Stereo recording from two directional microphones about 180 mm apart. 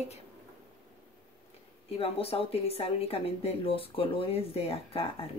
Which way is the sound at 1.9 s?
30° left (ahead or behind).